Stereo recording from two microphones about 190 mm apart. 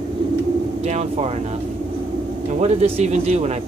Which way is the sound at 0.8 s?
35° right (ahead or behind).